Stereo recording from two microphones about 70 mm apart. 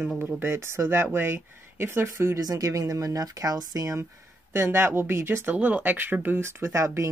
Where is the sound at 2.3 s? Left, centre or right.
Right.